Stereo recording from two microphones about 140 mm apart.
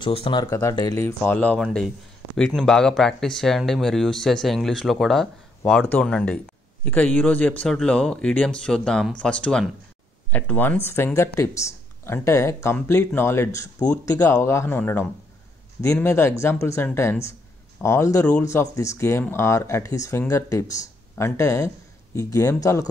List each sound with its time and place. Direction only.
0.0 s speech: 40° left (ahead or behind)
0.4 s speech: 20° left (ahead or behind)
1.0 s a man's voice: 15° left (ahead or behind)